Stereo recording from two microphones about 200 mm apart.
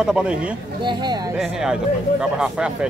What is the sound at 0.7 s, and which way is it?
Speech, 20° right (ahead or behind).